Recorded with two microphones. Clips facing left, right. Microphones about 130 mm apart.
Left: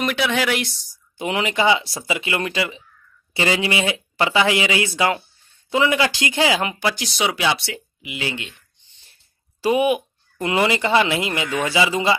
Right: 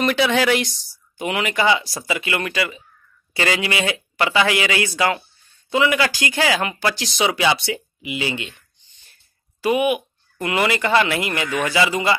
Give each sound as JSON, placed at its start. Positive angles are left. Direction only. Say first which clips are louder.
{"t": 0.0, "sound": "speech", "louder": "right 3 dB", "side_deg": 5}
{"t": 1.1, "sound": "speech", "louder": "even", "side_deg": 25}
{"t": 6.8, "sound": "speech", "louder": "right 1 dB", "side_deg": 5}
{"t": 9.6, "sound": "speech", "louder": "left 1 dB", "side_deg": 30}